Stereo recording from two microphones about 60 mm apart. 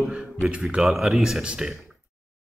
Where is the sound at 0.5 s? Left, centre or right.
Centre.